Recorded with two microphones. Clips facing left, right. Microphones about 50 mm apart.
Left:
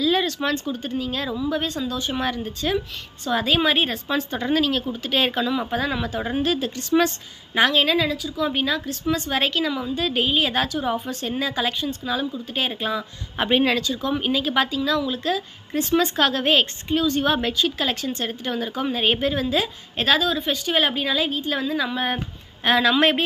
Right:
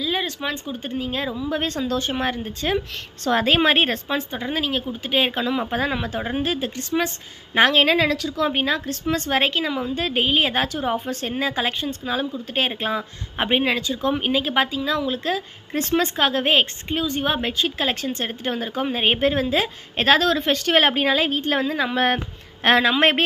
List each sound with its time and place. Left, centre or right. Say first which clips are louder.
0.0 s speech: left 4 dB; centre
0.7 s a woman's voice: even; right
4.1 s a woman's voice: left 2 dB; right
8.1 s speech: right 3 dB; right
8.5 s a woman's voice: even; right
13.5 s speech: left 1 dB; right
14.0 s a woman's voice: right 3 dB; right
16.2 s a woman's voice: even; right
20.2 s a woman's voice: right 3 dB; right
21.9 s a sound: right 4 dB; right
22.8 s a woman's voice: even; right